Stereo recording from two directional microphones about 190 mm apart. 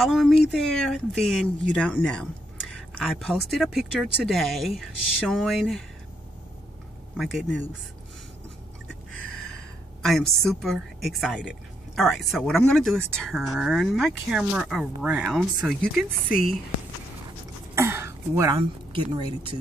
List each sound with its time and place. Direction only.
0.0 s a woman's voice: centre (ahead or behind)
7.2 s a woman's voice: centre (ahead or behind)
8.8 s a sound: 5° left (ahead or behind)
10.0 s a woman's voice: centre (ahead or behind)
17.7 s throat clearing: 15° right (ahead or behind)
18.6 s speech: 25° right (ahead or behind)